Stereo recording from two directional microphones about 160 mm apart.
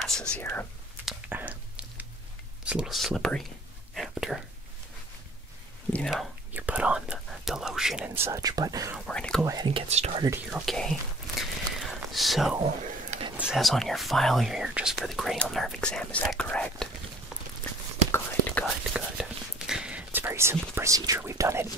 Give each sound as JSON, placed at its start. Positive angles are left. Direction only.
{"t": 0.0, "sound": "whispering", "side_deg": 5}
{"t": 0.4, "sound": "speech", "side_deg": 15}
{"t": 1.3, "sound": "a sound", "side_deg": -10}
{"t": 2.6, "sound": "speech", "side_deg": -5}
{"t": 3.9, "sound": "whispering", "side_deg": 0}
{"t": 6.0, "sound": "speech", "side_deg": -5}
{"t": 8.9, "sound": "speech", "side_deg": 5}
{"t": 9.4, "sound": "speech", "side_deg": -20}
{"t": 9.8, "sound": "speech", "side_deg": -45}
{"t": 10.5, "sound": "whispering", "side_deg": 0}
{"t": 13.4, "sound": "speech", "side_deg": 0}
{"t": 18.1, "sound": "whispering", "side_deg": 10}
{"t": 18.9, "sound": "whispering", "side_deg": -5}